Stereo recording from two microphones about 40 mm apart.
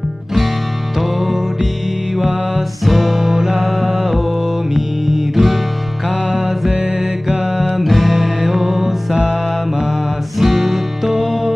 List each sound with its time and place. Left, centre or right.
1.2 s music: centre
2.8 s music: centre
6.7 s music: right
7.2 s music: centre
10.4 s music: centre